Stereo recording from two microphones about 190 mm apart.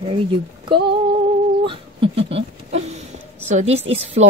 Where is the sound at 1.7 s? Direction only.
30° right (ahead or behind).